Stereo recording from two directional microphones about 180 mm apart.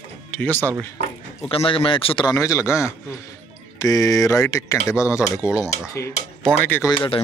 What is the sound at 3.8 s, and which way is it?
Speech, 20° left (ahead or behind).